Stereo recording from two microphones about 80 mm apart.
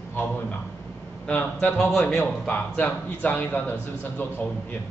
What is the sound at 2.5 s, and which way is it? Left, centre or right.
A man's voice, centre.